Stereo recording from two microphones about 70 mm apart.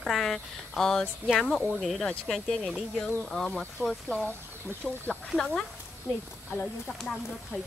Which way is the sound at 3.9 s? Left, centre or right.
Centre.